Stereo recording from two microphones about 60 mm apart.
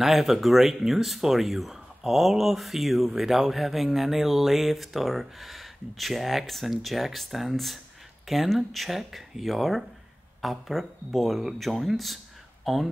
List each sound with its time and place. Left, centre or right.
0.0 s speech: centre